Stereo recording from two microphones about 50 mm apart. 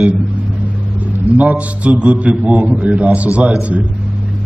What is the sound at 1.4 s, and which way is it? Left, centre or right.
A man's voice, right.